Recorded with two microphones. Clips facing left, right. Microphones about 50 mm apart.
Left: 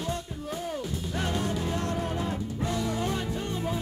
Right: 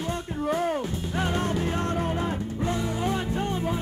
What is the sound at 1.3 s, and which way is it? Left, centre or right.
Music, right.